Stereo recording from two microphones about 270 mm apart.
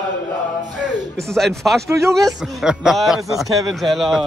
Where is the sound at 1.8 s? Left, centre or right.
Centre.